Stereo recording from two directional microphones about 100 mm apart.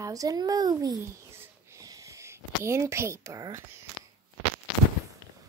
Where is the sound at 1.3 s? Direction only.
25° right (ahead or behind).